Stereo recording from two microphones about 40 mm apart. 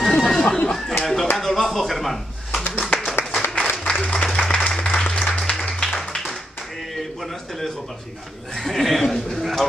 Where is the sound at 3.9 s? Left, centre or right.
Left.